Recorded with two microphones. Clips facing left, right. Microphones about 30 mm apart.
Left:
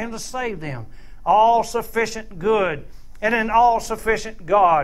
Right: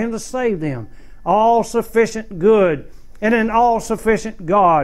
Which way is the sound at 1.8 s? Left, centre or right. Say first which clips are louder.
Right 7 dB; centre.